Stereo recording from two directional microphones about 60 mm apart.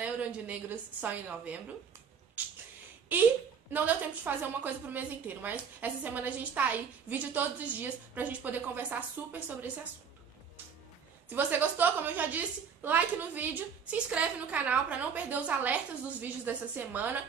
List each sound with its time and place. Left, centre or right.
0.0 s a woman's voice: right
2.4 s a sound: right
3.7 s a woman's voice: right
11.2 s a woman's voice: right
13.8 s a woman's voice: right